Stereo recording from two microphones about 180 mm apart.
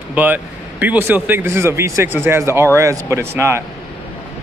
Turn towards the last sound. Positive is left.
turn(degrees=-15)  # may be behind; listen again after turning